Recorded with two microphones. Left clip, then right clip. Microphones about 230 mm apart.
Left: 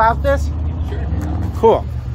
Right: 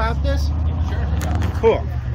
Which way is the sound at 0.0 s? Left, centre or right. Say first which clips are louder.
Left 10 dB; centre.